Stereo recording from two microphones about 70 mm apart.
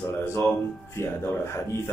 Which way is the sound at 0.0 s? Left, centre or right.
Left.